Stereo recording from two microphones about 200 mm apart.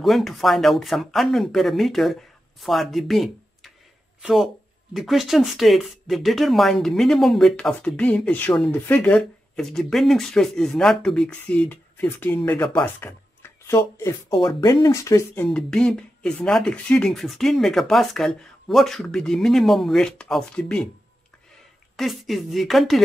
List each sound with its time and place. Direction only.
0.0 s speech: centre (ahead or behind)
14.3 s speech: 25° left (ahead or behind); by 20.9 s 5° left (ahead or behind)
21.9 s speech: centre (ahead or behind)